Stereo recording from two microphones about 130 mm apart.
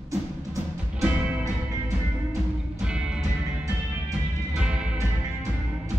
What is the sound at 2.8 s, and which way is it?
Music, 5° right (ahead or behind).